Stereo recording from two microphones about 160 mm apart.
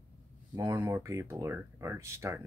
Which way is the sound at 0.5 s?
20° right (ahead or behind).